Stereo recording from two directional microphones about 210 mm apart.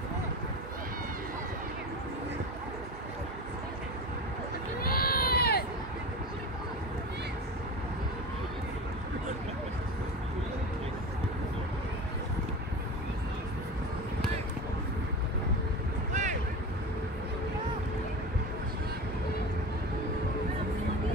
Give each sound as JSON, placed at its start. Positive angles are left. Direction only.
{"t": 4.8, "sound": "baby cry", "side_deg": 45}
{"t": 16.1, "sound": "vehicle", "side_deg": -35}